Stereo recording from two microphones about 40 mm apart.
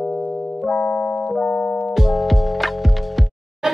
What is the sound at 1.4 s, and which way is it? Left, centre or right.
Music, left.